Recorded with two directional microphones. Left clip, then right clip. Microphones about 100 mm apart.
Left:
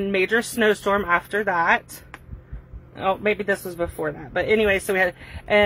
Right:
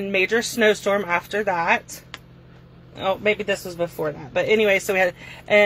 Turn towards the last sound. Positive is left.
turn(degrees=30)  # may be behind; listen again after turning